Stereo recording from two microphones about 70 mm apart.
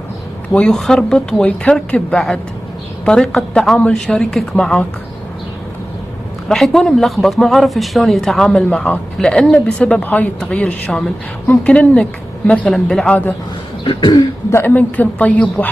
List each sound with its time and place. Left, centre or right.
0.9 s a woman's voice: centre
6.5 s a woman's voice: centre
14.5 s a woman's voice: left